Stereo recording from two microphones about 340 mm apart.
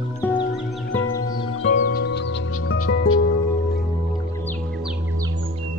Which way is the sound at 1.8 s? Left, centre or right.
Left.